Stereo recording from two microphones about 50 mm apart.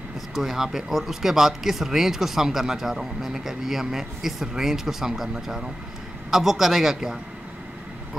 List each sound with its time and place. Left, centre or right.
0.3 s a man's voice: centre